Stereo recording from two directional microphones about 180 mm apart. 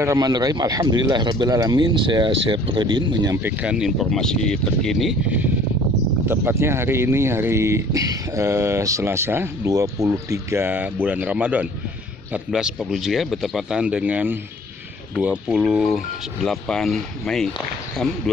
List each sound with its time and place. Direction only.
0.0 s speech: 20° right (ahead or behind)
3.4 s speech: 5° right (ahead or behind)